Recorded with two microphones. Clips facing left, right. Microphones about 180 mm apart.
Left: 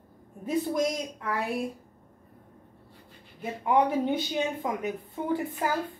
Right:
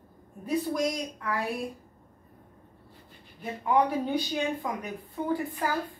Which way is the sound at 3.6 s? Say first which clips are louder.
Left 1 dB; 20° left (ahead or behind).